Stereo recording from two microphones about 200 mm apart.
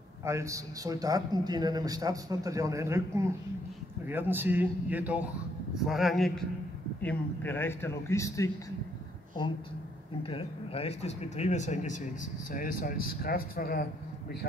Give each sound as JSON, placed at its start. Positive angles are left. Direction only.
{"t": 0.2, "sound": "a man's voice", "side_deg": -15}
{"t": 10.2, "sound": "speech", "side_deg": 25}